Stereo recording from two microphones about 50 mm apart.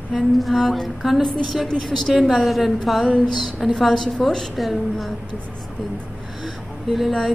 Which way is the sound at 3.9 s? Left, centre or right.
Centre.